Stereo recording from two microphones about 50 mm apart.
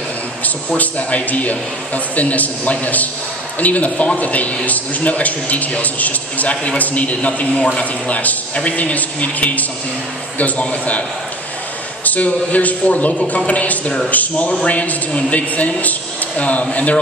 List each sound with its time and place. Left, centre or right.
0.7 s a man's voice: left